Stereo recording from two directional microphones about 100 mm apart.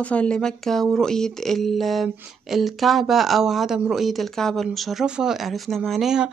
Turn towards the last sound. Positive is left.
turn(degrees=-5)  # may be behind; listen again after turning